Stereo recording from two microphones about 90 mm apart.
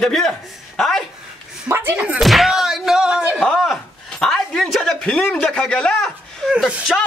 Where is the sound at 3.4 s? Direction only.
5° left (ahead or behind).